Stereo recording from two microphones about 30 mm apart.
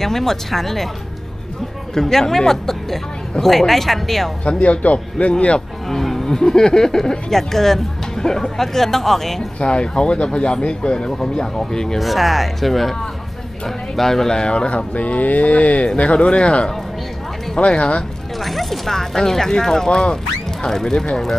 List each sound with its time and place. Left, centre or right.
0.0 s speech: centre
2.0 s speech: centre
4.5 s speech: left
5.9 s music: centre
6.2 s speech: left
9.6 s speech: left
11.3 s speech: centre
12.0 s speech: centre
14.3 s speech: left
15.0 s speech: left
18.4 s a sound: centre
18.9 s speech: centre